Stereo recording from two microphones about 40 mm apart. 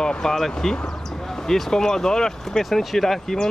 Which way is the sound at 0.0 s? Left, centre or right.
Left.